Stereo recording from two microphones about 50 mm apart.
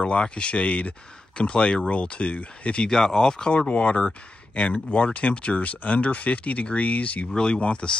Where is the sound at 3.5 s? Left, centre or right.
Left.